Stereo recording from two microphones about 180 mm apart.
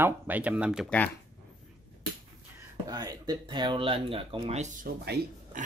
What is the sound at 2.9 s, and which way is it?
Speech, 20° right (ahead or behind).